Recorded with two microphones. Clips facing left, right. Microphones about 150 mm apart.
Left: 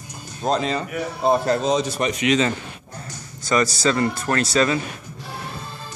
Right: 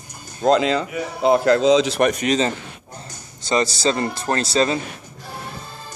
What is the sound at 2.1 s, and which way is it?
A man's voice, 40° right (ahead or behind).